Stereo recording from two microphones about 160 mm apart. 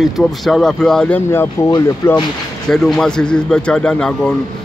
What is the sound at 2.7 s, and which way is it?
Speech, 5° left (ahead or behind).